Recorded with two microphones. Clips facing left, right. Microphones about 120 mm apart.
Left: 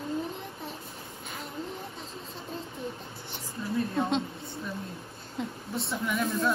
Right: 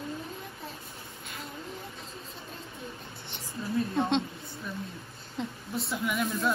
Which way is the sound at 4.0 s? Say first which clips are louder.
Right 1 dB; 5° left (ahead or behind).